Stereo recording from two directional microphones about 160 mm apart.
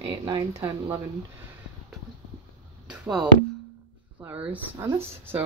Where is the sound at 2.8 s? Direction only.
5° right (ahead or behind).